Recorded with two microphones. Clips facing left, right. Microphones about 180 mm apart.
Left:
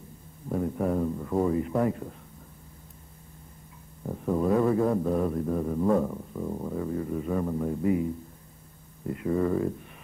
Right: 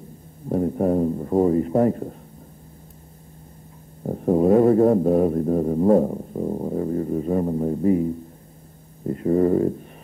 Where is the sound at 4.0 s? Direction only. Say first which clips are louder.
Right 8 dB; 40° right (ahead or behind).